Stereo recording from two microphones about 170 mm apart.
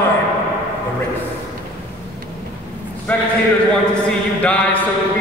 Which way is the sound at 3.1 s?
10° left (ahead or behind).